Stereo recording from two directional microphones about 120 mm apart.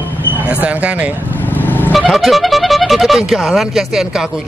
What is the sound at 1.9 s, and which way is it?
Speech, centre (ahead or behind).